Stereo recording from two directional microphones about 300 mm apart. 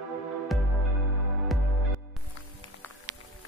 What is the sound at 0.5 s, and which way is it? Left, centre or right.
Music, centre.